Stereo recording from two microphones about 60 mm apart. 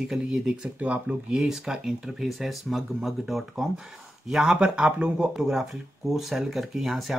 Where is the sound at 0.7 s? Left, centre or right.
Right.